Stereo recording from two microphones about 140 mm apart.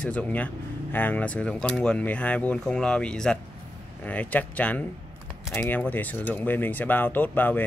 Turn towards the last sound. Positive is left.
turn(degrees=10)  # may be behind; listen again after turning